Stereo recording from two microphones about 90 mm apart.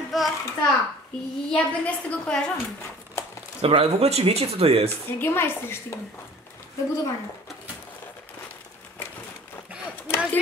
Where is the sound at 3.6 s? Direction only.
90° right.